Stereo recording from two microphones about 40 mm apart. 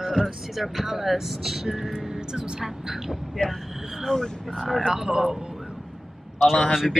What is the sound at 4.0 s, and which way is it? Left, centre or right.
Speech, centre.